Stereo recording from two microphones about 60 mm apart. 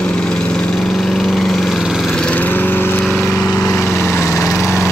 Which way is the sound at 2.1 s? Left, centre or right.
Centre.